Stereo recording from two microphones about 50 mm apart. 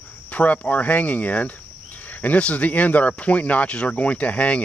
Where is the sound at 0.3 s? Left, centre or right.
Left.